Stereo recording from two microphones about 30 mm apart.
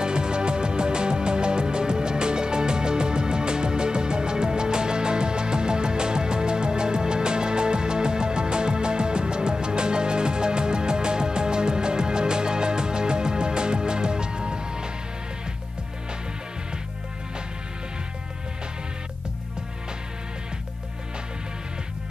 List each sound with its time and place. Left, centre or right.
0.0 s music: right